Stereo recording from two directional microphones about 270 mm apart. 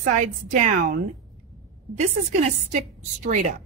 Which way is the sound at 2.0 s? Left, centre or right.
Right.